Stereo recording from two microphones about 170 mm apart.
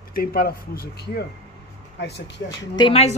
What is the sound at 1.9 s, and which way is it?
Speech, 80° left.